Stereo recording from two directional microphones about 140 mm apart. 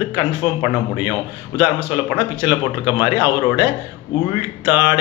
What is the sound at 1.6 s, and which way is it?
Speech, 15° right (ahead or behind).